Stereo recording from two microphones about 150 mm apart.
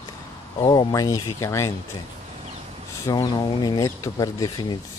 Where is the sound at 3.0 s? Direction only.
25° left (ahead or behind).